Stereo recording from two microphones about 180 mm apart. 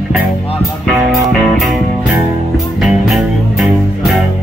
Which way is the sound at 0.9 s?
Centre (ahead or behind).